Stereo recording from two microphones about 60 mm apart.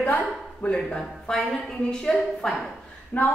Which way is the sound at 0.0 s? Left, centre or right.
Left.